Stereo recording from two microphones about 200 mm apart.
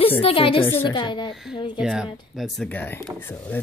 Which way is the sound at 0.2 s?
30° left (ahead or behind).